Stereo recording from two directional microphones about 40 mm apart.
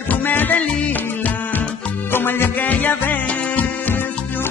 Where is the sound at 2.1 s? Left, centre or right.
Left.